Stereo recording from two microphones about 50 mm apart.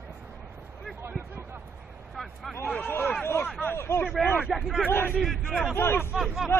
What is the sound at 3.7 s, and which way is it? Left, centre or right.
Speech, left.